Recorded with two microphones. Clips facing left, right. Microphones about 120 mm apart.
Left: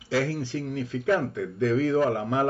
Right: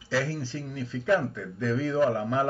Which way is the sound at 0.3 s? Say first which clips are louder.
Left 4 dB; 15° left (ahead or behind).